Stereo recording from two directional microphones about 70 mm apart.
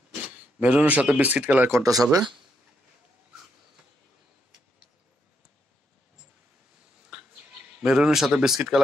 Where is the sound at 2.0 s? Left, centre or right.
Right.